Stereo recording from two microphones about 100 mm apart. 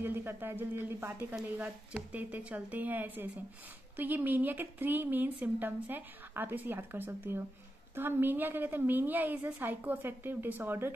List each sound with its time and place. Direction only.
0.0 s a woman's voice: 20° right (ahead or behind)